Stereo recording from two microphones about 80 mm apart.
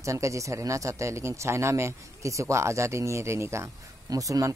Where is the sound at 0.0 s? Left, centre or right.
Right.